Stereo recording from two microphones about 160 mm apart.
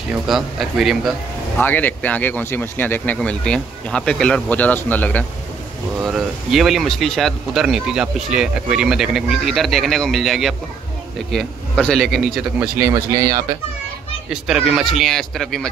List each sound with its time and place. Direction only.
0.3 s speech: centre (ahead or behind)
1.6 s speech: 10° left (ahead or behind)
6.0 s speech: centre (ahead or behind)
12.9 s speech: 25° right (ahead or behind)
14.3 s speech: 5° right (ahead or behind)